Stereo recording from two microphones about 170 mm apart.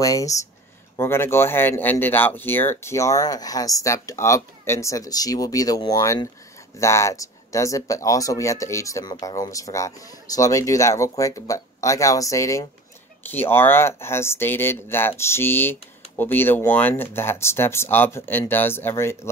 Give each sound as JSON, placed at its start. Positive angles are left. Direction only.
{"t": 0.0, "sound": "speech", "side_deg": 20}